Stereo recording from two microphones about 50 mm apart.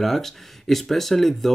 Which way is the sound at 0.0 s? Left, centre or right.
Centre.